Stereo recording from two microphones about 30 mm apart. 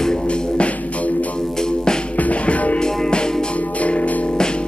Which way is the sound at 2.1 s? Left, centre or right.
Left.